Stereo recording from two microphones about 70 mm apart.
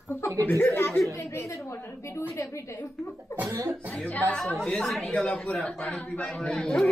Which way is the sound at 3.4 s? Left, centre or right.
Right.